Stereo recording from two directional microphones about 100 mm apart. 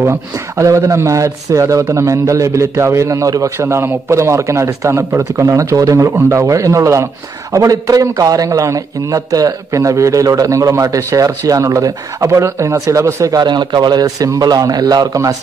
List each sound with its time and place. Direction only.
0.0 s speech: 30° right (ahead or behind)
13.4 s speech: 45° right (ahead or behind)